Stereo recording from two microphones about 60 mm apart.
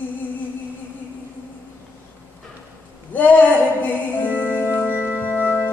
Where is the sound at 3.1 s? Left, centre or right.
Left.